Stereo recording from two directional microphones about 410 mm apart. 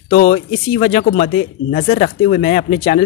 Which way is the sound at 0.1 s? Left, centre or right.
Centre.